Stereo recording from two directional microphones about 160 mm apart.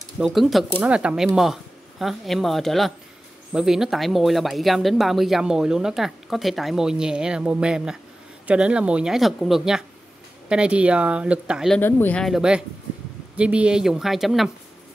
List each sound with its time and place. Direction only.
0.2 s speech: centre (ahead or behind)
11.8 s speech: 10° left (ahead or behind)